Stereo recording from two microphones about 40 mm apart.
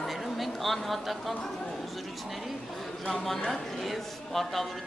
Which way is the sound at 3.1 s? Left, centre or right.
Centre.